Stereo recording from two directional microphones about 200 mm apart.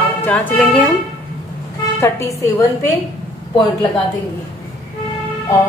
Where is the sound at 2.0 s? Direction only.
15° left (ahead or behind).